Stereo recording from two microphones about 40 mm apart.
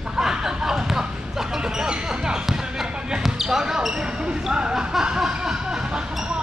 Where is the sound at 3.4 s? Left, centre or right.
Centre.